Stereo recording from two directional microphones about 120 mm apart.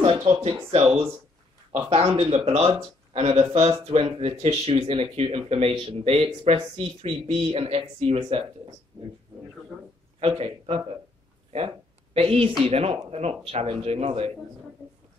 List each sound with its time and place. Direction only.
0.0 s a sound: 50° right (ahead or behind)
1.7 s speech: 55° right (ahead or behind)
2.7 s speech: 50° right (ahead or behind)
10.2 s speech: 55° right (ahead or behind)